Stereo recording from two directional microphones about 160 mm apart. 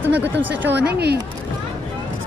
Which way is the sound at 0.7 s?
90° right.